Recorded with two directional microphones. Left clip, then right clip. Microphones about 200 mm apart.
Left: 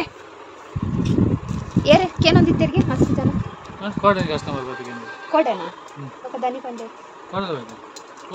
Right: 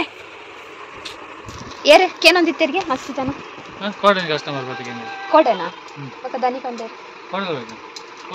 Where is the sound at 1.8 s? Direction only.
10° right (ahead or behind).